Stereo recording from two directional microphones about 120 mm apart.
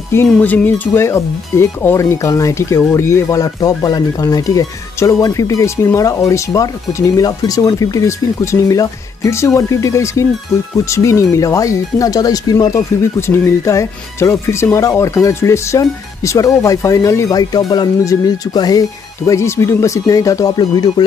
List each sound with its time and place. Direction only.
0.3 s speech: 10° left (ahead or behind); by 20.9 s 35° left (ahead or behind)